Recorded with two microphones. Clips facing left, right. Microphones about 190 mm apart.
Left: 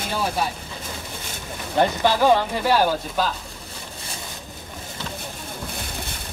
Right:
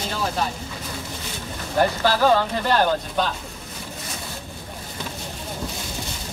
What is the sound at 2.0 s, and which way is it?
Speech, 15° left (ahead or behind).